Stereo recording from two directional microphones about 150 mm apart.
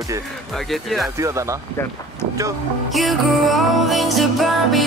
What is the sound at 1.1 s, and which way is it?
Speech, 20° right (ahead or behind).